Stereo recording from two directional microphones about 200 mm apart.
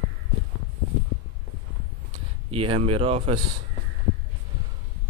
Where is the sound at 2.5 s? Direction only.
30° right (ahead or behind).